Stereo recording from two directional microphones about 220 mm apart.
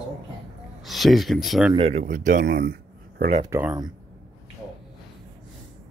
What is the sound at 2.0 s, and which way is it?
Speech, 50° right (ahead or behind).